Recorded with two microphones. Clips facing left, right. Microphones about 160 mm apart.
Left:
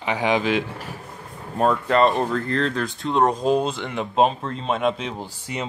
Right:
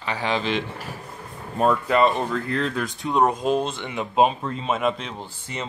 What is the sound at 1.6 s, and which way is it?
Speech, 5° right (ahead or behind).